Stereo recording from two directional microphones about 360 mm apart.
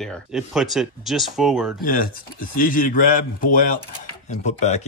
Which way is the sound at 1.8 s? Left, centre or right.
Left.